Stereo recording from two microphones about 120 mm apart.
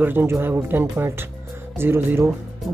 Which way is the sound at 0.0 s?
15° right (ahead or behind).